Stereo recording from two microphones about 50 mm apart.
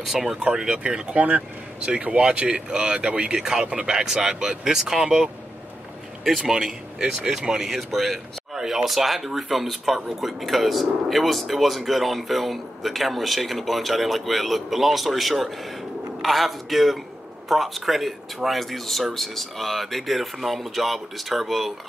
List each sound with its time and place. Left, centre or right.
0.0 s speech: centre
1.1 s speech: right; by 5.1 s centre
6.4 s speech: centre